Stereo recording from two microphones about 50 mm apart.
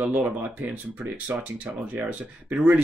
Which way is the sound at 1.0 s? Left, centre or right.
Right.